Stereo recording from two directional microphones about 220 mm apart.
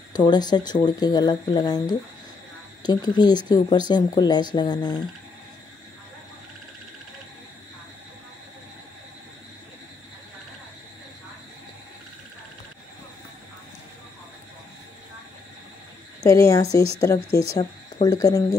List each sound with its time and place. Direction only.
0.1 s speech: 20° left (ahead or behind)
16.3 s speech: 15° left (ahead or behind)